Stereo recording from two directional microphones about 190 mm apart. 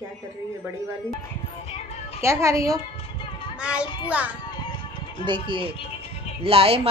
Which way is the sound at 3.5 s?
5° right (ahead or behind).